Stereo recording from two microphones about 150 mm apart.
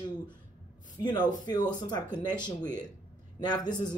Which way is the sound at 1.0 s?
30° left (ahead or behind).